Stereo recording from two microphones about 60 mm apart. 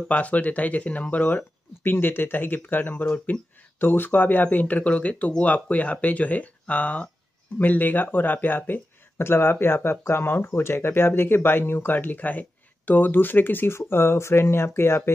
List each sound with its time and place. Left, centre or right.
0.1 s speech: left